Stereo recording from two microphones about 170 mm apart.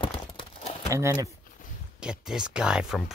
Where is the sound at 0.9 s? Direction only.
15° right (ahead or behind).